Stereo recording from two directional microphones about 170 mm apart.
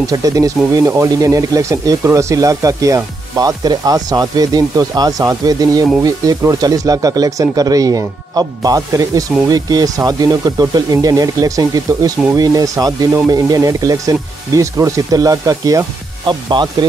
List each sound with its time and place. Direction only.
0.1 s speech: 20° right (ahead or behind)